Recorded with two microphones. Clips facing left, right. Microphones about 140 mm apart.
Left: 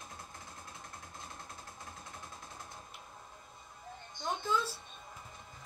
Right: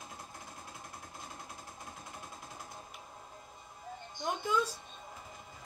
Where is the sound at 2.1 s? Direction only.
10° right (ahead or behind).